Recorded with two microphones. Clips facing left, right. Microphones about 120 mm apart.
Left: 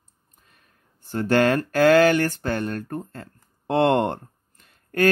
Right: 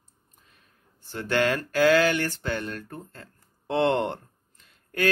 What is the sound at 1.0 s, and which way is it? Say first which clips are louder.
Speech: left 5 dB; 45° left (ahead or behind).